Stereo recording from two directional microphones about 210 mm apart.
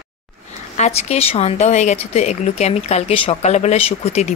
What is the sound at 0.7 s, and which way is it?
Speech, 30° left (ahead or behind).